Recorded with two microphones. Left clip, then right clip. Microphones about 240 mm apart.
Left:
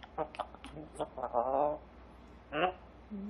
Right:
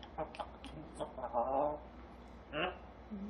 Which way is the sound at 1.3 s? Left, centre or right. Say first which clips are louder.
Left 3 dB; centre.